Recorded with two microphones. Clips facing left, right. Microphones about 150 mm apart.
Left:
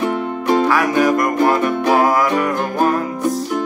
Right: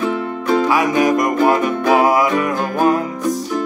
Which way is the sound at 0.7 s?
15° right (ahead or behind).